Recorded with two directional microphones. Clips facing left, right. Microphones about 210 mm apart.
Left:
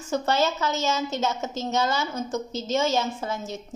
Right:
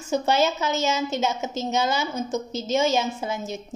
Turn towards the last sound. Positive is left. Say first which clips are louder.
# right 2 dB
turn(degrees=-15)  # may be behind; listen again after turning